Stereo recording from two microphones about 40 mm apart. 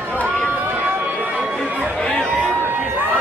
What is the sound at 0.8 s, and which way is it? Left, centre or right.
Run, right.